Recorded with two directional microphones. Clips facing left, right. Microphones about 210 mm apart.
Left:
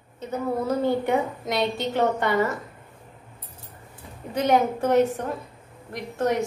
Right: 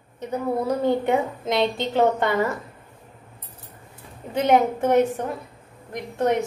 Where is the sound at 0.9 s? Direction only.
20° right (ahead or behind).